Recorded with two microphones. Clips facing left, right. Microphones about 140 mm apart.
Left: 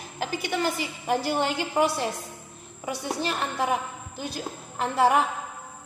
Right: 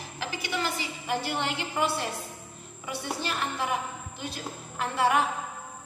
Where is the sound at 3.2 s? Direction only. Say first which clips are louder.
Left 4 dB; 30° left (ahead or behind).